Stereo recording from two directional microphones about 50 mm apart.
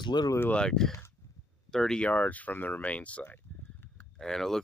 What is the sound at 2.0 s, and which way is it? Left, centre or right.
Speech, left.